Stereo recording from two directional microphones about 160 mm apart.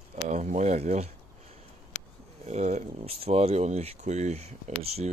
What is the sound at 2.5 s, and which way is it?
Speech, 45° right (ahead or behind).